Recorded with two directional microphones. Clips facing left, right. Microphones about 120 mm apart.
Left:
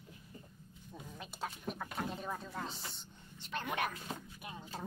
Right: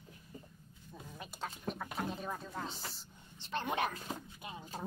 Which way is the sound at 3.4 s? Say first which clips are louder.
Right 2 dB; 30° right (ahead or behind).